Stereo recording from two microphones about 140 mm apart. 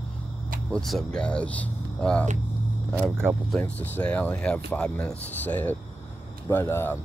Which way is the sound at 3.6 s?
10° left (ahead or behind).